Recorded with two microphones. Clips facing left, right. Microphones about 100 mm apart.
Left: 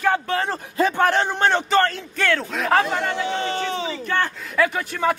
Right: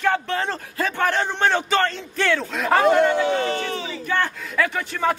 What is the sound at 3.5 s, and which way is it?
Speech, 25° left (ahead or behind).